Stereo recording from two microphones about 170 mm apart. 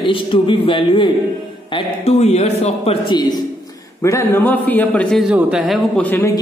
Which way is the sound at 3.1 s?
25° left (ahead or behind).